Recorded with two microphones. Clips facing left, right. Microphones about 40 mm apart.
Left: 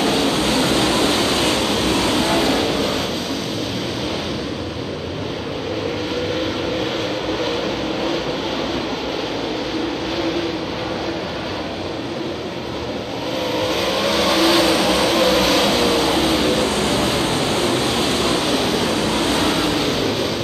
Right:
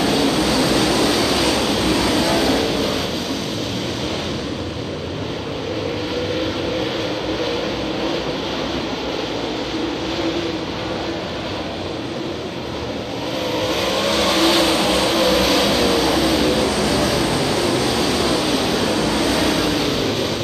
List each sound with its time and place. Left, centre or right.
0.0 s vehicle: centre
0.5 s vehicle: left
1.6 s vehicle: centre
13.6 s vehicle: centre
16.6 s vehicle: left
18.4 s vehicle: centre